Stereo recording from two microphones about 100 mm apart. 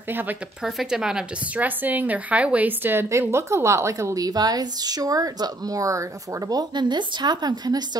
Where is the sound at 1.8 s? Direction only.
15° right (ahead or behind); by 6.0 s 35° right (ahead or behind).